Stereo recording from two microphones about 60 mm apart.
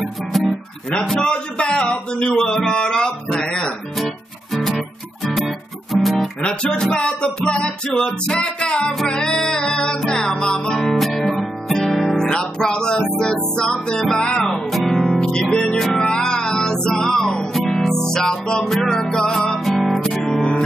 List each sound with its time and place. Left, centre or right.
0.0 s guitar: centre
0.8 s a man's voice: centre
4.0 s guitar: centre
5.9 s guitar: centre
6.4 s a man's voice: centre
9.0 s music: centre
14.4 s speech: centre
15.5 s music: centre
20.3 s music: centre